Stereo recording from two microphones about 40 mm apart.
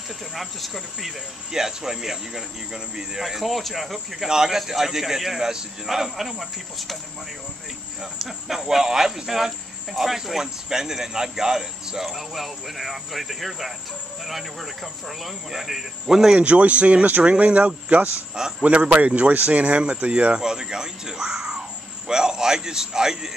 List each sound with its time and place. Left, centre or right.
0.3 s speech: centre
4.3 s speech: centre
8.0 s speech: centre
12.1 s speech: centre
16.3 s speech: right; by 23.3 s centre